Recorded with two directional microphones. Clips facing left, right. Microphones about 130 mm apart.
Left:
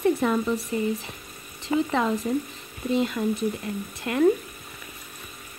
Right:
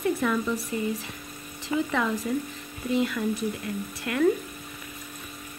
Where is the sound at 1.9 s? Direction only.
25° left (ahead or behind).